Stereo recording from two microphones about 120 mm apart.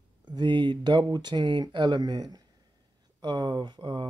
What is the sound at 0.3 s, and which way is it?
Speech, 40° right (ahead or behind).